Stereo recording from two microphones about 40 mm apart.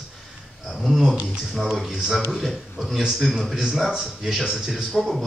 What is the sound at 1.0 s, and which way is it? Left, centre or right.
Speech, centre.